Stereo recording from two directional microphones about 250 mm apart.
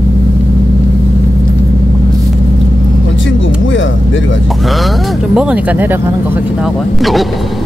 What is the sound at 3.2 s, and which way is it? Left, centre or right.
Speech, left.